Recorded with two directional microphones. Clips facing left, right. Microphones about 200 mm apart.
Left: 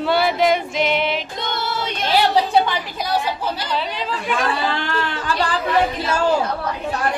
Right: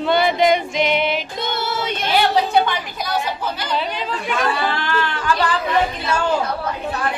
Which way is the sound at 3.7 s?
Centre (ahead or behind).